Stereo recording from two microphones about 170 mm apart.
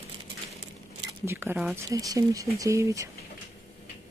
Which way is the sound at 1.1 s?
15° right (ahead or behind).